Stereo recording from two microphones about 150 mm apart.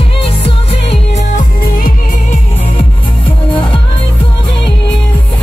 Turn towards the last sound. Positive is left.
turn(degrees=35)  # may be behind; listen again after turning